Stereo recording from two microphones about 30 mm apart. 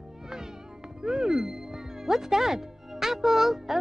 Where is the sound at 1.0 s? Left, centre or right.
Right.